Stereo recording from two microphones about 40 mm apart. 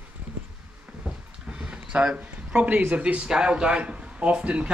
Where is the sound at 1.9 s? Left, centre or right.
Right.